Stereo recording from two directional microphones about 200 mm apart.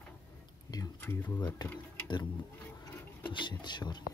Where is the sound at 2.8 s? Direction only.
25° left (ahead or behind).